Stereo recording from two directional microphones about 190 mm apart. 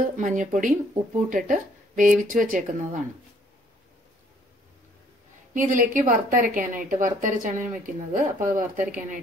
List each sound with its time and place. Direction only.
0.2 s a woman's voice: 45° right (ahead or behind)
5.5 s a woman's voice: 40° right (ahead or behind)